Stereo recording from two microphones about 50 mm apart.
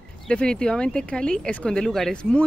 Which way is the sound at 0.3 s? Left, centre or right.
Centre.